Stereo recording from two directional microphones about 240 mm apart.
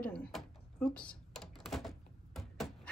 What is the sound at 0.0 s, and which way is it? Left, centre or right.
Typing, centre.